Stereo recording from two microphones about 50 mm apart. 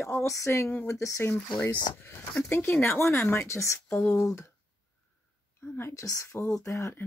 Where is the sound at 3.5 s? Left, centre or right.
Left.